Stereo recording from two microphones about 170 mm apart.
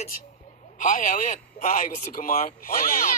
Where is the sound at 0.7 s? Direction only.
50° left (ahead or behind).